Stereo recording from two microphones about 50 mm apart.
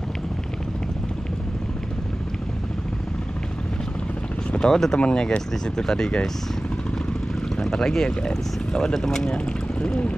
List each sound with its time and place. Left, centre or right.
4.5 s speech: centre
7.6 s speech: centre
9.3 s speech: centre